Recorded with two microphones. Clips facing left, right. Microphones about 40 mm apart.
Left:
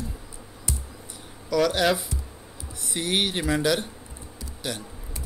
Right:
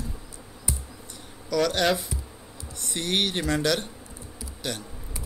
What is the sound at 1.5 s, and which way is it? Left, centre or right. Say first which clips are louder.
Speech: left 1 dB; centre.